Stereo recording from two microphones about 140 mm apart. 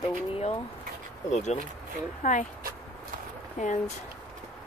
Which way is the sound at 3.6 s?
60° left (ahead or behind).